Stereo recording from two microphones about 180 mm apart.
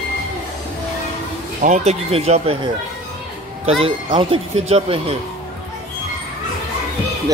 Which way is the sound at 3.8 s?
30° right (ahead or behind).